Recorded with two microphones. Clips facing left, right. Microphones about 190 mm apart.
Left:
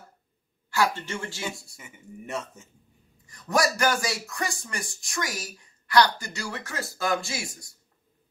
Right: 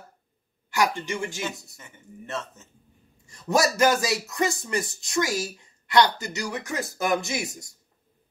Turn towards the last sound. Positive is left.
turn(degrees=-20)  # may be behind; listen again after turning